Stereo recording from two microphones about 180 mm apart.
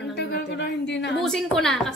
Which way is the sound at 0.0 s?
70° left (ahead or behind).